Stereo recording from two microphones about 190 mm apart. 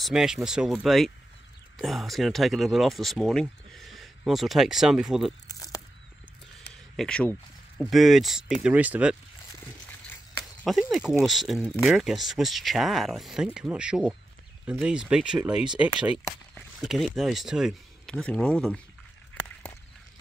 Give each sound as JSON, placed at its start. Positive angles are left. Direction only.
{"t": 0.0, "sound": "speech", "side_deg": 0}
{"t": 5.5, "sound": "a sound", "side_deg": 20}
{"t": 6.7, "sound": "a sound", "side_deg": 5}
{"t": 7.8, "sound": "speech", "side_deg": 0}
{"t": 10.6, "sound": "speech", "side_deg": 0}
{"t": 16.8, "sound": "speech", "side_deg": 0}